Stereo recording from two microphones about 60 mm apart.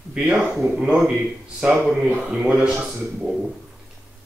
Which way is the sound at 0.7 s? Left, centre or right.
Centre.